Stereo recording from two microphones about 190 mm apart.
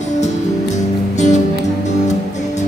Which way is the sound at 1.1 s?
40° left (ahead or behind).